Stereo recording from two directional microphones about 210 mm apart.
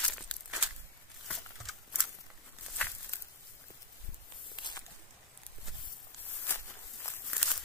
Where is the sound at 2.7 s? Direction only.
10° left (ahead or behind).